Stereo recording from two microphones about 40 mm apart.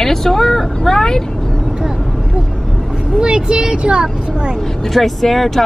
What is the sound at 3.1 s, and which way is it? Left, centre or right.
Speech, right.